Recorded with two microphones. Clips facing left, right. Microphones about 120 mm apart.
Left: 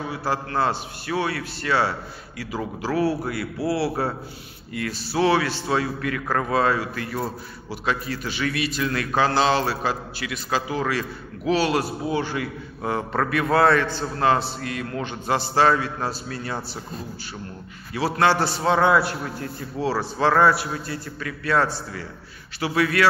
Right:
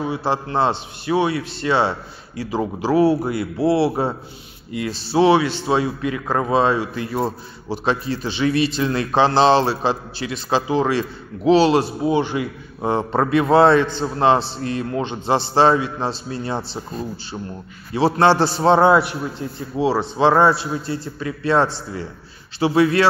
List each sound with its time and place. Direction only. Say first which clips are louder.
0.0 s a man's voice: right 4 dB; 25° right (ahead or behind)
17.9 s a man's voice: right 5 dB; 25° right (ahead or behind)
19.0 s a man's voice: right 3 dB; 20° right (ahead or behind)